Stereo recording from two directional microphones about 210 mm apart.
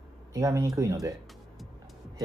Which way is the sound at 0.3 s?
15° right (ahead or behind).